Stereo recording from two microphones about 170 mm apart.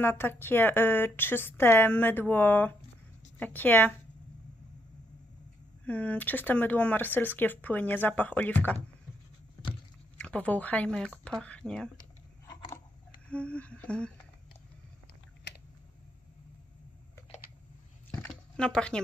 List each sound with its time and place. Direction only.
0.0 s speech: 15° left (ahead or behind)
5.9 s speech: 10° left (ahead or behind)
10.1 s speech: 10° left (ahead or behind)
12.4 s a sound: 25° left (ahead or behind)
13.3 s speech: 5° left (ahead or behind)
18.2 s a sound: 5° left (ahead or behind)